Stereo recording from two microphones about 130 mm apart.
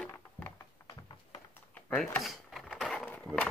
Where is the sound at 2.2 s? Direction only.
Centre (ahead or behind).